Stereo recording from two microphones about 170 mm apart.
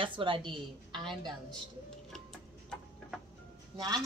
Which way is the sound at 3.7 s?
20° right (ahead or behind).